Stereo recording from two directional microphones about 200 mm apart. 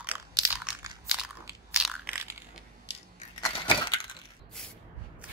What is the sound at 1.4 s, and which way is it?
Biting, 5° right (ahead or behind).